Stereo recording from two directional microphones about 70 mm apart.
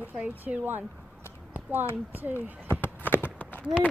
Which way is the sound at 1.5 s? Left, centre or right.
Right.